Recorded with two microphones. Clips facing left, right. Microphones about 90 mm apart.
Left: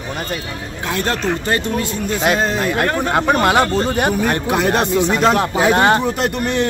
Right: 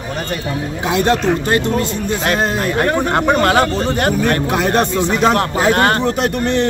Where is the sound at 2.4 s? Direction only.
5° right (ahead or behind).